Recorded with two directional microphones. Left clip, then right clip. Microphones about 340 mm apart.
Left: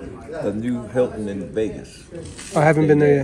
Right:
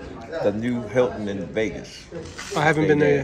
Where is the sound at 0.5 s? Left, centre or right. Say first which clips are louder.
Right 1 dB; right.